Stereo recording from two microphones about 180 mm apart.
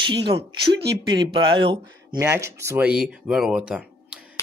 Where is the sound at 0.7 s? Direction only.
65° right (ahead or behind).